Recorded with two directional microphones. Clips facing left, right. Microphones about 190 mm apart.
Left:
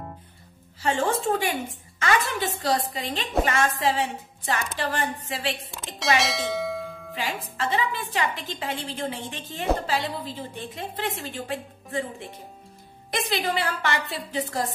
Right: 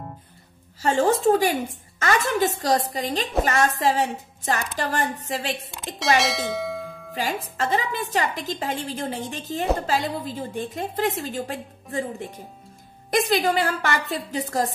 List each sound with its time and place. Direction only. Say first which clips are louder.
0.8 s a woman's voice: right 5 dB; 40° right (ahead or behind)
5.7 s speech: right 3 dB; centre (ahead or behind)
7.2 s a woman's voice: right 4 dB; 45° right (ahead or behind)